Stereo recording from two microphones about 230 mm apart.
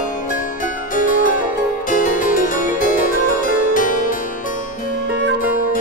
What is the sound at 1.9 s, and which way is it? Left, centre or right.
Harpsichord, left.